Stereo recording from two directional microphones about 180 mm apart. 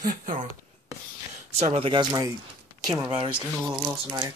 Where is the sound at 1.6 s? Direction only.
30° right (ahead or behind).